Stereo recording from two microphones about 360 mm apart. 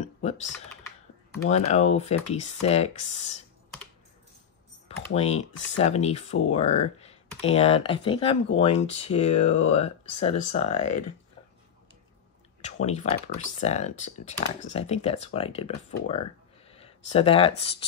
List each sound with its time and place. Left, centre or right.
0.0 s typing: centre
1.4 s speech: centre
4.8 s computer keyboard: centre
5.8 s speech: centre
12.8 s speech: centre